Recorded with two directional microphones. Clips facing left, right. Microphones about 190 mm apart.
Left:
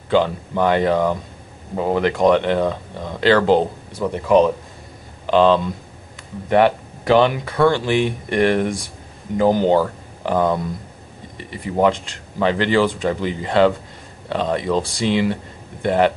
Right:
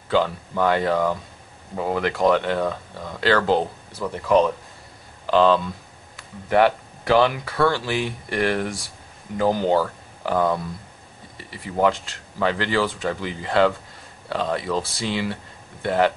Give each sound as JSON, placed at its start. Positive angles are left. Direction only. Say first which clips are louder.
{"t": 0.1, "sound": "speech", "louder": "left 4 dB", "side_deg": 20}